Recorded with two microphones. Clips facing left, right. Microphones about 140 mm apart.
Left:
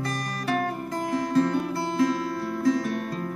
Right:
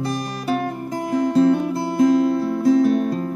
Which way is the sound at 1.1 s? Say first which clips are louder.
Right 7 dB; 25° right (ahead or behind).